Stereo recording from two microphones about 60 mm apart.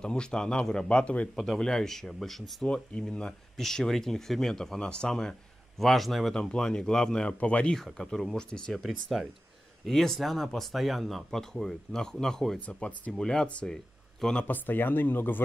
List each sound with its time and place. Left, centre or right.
0.0 s speech: centre
1.3 s speech: centre
2.7 s speech: centre
5.8 s speech: centre; by 7.7 s left
7.7 s speech: centre
8.7 s speech: centre
12.6 s speech: left
13.2 s speech: centre
14.5 s speech: left